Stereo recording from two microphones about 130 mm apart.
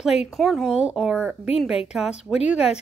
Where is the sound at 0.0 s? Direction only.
5° right (ahead or behind).